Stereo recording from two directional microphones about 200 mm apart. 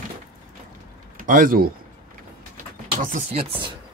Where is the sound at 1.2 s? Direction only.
40° right (ahead or behind).